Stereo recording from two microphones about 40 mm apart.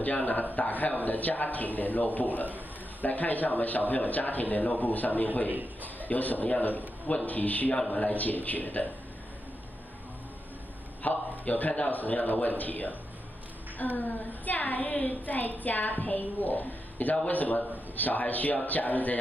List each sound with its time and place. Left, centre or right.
0.0 s a man's voice: left
5.5 s a man's voice: right
6.0 s a woman's voice: left
11.0 s a man's voice: left